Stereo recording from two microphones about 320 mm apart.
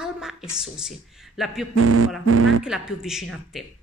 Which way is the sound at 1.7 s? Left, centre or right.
Right.